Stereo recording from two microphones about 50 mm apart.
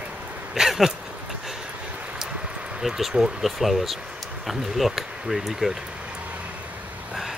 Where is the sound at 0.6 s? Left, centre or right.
Centre.